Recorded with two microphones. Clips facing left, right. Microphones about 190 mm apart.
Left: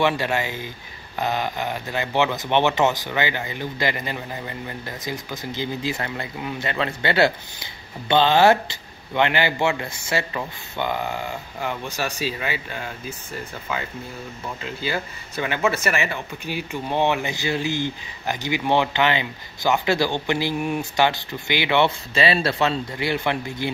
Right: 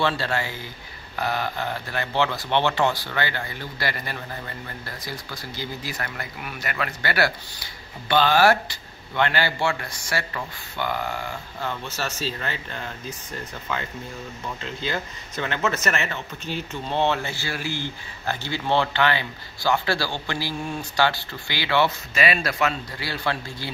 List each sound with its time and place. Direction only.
0.0 s speech: 15° left (ahead or behind)